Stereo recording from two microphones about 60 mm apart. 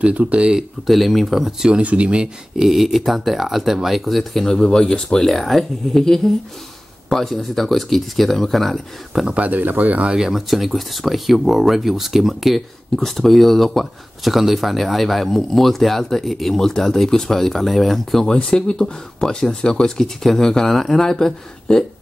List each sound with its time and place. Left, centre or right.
0.0 s speech: right
0.8 s speech: centre
1.8 s speech: right
2.5 s speech: centre
9.2 s speech: right
10.1 s speech: centre